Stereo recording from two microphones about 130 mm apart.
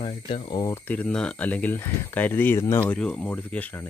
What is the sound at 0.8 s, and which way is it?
Speech, 10° left (ahead or behind).